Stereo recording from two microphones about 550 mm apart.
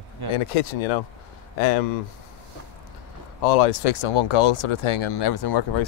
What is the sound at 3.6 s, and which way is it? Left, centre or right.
Speech, left.